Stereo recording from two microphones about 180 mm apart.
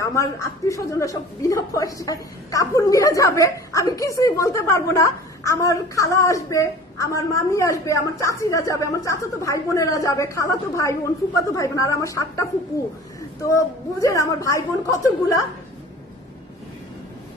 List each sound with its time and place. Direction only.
0.0 s a woman's voice: 15° left (ahead or behind)